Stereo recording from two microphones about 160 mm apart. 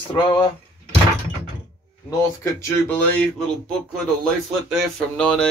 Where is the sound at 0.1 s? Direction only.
30° left (ahead or behind).